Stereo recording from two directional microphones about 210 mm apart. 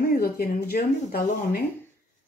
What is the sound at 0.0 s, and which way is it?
Speech, 45° left (ahead or behind).